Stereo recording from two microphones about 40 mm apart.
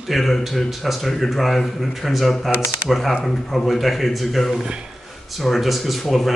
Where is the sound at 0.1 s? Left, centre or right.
Centre.